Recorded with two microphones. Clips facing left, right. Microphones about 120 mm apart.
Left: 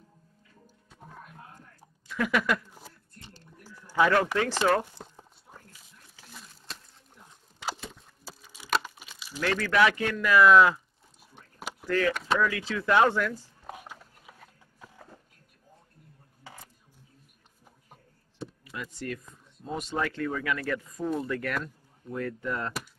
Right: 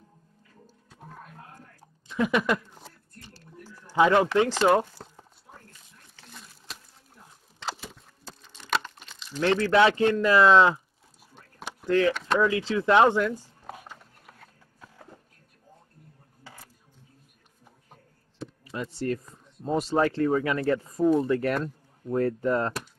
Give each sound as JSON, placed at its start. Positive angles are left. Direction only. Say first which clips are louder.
{"t": 1.8, "sound": "a sound", "louder": "right 4 dB", "side_deg": -20}
{"t": 3.2, "sound": "music", "louder": "right 2 dB", "side_deg": 20}
{"t": 3.8, "sound": "speech", "louder": "right 3 dB", "side_deg": -20}
{"t": 5.0, "sound": "a sound", "louder": "right 1 dB", "side_deg": -5}
{"t": 9.4, "sound": "speech", "louder": "right 4 dB", "side_deg": -25}
{"t": 11.8, "sound": "speech", "louder": "right 4 dB", "side_deg": -20}
{"t": 12.1, "sound": "speech", "louder": "right 2 dB", "side_deg": 0}
{"t": 12.4, "sound": "speech", "louder": "right 4 dB", "side_deg": -25}
{"t": 13.7, "sound": "a sound", "louder": "even", "side_deg": 0}
{"t": 18.6, "sound": "speech", "louder": "right 8 dB", "side_deg": -30}